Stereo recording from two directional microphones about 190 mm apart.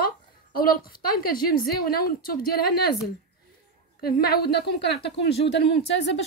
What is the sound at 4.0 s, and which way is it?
A woman's voice, 55° left (ahead or behind).